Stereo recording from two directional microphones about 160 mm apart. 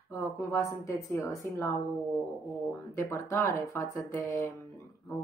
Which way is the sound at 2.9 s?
15° left (ahead or behind).